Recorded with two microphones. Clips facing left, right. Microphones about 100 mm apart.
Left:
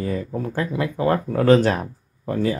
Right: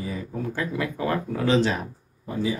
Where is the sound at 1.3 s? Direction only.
50° left (ahead or behind).